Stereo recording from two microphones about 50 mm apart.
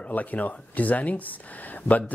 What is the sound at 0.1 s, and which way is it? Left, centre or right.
Speech, left.